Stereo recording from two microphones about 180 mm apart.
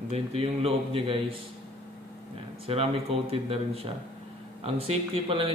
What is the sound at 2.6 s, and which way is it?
Speech, 30° right (ahead or behind).